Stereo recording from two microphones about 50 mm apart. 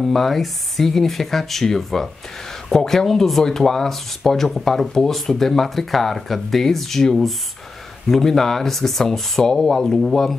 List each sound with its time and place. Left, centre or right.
0.0 s speech: centre